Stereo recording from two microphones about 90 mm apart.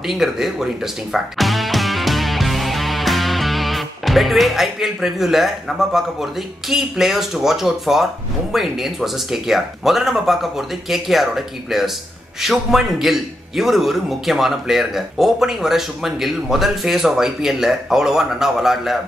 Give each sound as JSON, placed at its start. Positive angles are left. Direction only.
{"t": 0.0, "sound": "a man's voice", "side_deg": -5}
{"t": 1.1, "sound": "music", "side_deg": 0}
{"t": 6.7, "sound": "a man's voice", "side_deg": -5}